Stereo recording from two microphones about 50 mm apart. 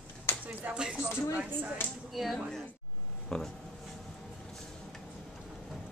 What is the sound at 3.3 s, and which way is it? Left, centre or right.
Speech, centre.